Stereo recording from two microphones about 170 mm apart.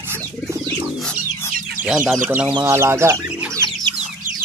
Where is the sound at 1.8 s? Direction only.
5° right (ahead or behind).